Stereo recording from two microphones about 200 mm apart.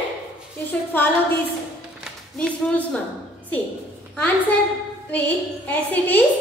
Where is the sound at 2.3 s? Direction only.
5° left (ahead or behind).